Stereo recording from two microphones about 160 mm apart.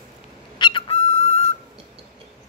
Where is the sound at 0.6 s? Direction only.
35° left (ahead or behind).